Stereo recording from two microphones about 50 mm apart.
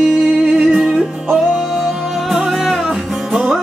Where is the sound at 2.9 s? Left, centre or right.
Centre.